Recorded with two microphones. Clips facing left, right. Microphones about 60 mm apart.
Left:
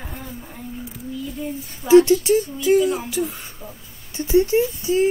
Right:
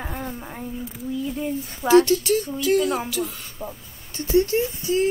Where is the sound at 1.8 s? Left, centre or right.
Right.